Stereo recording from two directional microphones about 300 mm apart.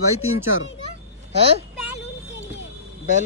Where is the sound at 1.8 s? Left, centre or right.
Left.